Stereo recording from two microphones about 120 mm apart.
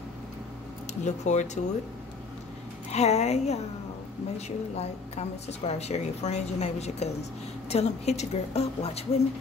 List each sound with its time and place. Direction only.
1.0 s speech: 75° left (ahead or behind)
2.9 s a woman's voice: 65° left (ahead or behind)